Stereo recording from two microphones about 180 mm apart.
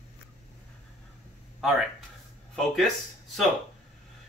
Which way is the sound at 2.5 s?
Centre (ahead or behind).